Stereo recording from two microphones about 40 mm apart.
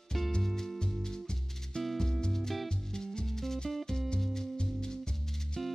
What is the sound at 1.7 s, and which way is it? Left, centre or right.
Music, left.